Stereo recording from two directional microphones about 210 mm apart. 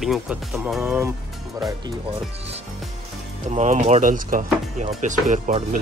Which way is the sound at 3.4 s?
35° right (ahead or behind).